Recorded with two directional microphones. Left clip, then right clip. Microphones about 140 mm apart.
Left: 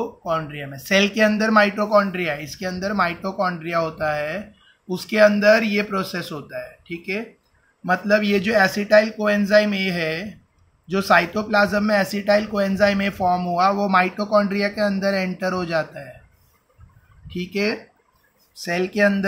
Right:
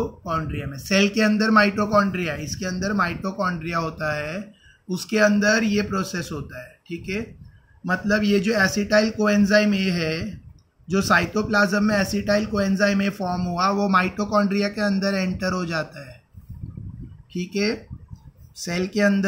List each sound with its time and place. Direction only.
0.2 s speech: 40° right (ahead or behind)
17.3 s speech: 45° right (ahead or behind)
18.7 s speech: 60° right (ahead or behind)